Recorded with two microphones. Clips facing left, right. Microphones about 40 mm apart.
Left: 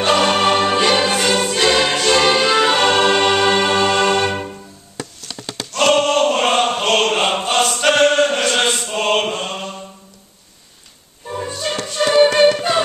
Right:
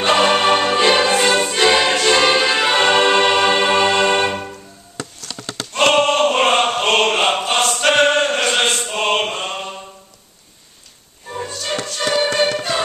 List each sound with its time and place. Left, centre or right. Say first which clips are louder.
0.0 s music: even; centre
2.0 s choir: even; centre
5.7 s a sound: even; centre
6.7 s chant: even; centre
7.4 s choir: left 1 dB; centre
8.0 s chant: left 1 dB; centre
11.4 s music: even; centre